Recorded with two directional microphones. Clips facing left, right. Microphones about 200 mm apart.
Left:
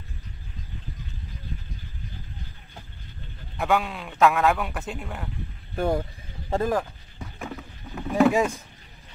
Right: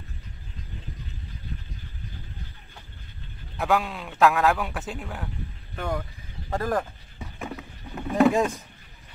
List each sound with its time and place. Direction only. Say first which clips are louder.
3.5 s a man's voice: even; centre (ahead or behind)
5.8 s speech: left 6 dB; 30° left (ahead or behind)
6.7 s a sound: left 1 dB; centre (ahead or behind)